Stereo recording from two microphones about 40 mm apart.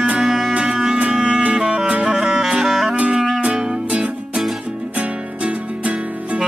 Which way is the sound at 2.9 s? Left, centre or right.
Right.